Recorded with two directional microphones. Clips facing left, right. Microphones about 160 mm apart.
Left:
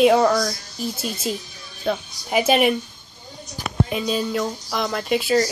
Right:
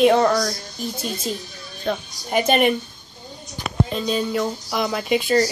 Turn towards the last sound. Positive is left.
turn(degrees=0)  # may be behind; listen again after turning